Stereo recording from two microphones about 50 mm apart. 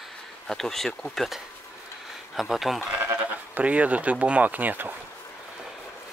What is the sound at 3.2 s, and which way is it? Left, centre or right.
Speech, right.